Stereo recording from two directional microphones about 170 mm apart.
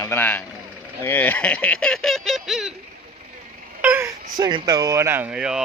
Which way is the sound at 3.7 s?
10° right (ahead or behind).